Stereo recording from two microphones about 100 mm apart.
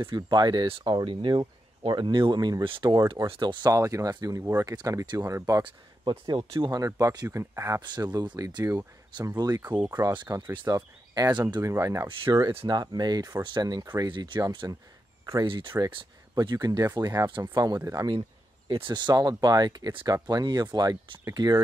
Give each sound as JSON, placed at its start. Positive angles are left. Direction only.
{"t": 0.1, "sound": "speech", "side_deg": -45}
{"t": 3.7, "sound": "speech", "side_deg": -35}
{"t": 5.6, "sound": "speech", "side_deg": -50}
{"t": 7.8, "sound": "speech", "side_deg": -45}
{"t": 9.6, "sound": "speech", "side_deg": -20}
{"t": 9.9, "sound": "speech", "side_deg": -35}
{"t": 11.6, "sound": "speech", "side_deg": -30}
{"t": 12.6, "sound": "speech", "side_deg": -45}
{"t": 15.4, "sound": "speech", "side_deg": -55}
{"t": 16.3, "sound": "speech", "side_deg": -40}
{"t": 18.7, "sound": "speech", "side_deg": -55}